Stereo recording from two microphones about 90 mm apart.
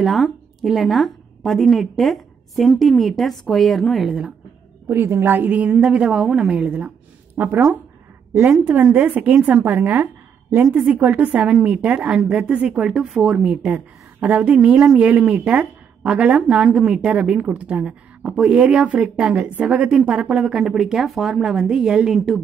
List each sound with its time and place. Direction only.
0.0 s a woman's voice: centre (ahead or behind)
4.8 s a woman's voice: 25° right (ahead or behind); by 22.4 s centre (ahead or behind)